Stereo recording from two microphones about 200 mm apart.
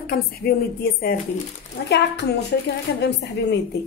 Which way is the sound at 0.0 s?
50° left (ahead or behind).